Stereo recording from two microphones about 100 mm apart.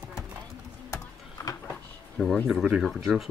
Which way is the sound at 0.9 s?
30° left (ahead or behind).